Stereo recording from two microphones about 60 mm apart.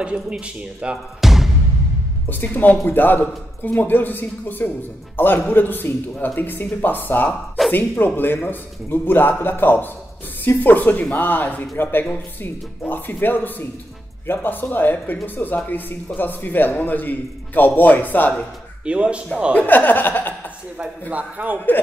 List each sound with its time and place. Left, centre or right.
0.0 s speech: centre
1.2 s music: centre
2.2 s a man's voice: left
18.9 s speech: centre
19.5 s a man's voice: left
21.1 s speech: right